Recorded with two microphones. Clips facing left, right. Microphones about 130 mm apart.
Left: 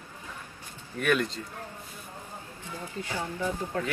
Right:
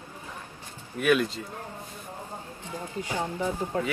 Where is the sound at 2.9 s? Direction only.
15° right (ahead or behind).